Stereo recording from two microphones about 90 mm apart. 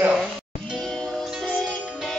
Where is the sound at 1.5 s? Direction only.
15° left (ahead or behind).